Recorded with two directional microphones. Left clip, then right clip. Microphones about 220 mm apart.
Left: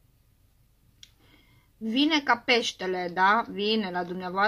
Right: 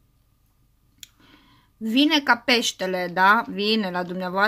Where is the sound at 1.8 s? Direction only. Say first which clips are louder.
Right 5 dB; 45° right (ahead or behind).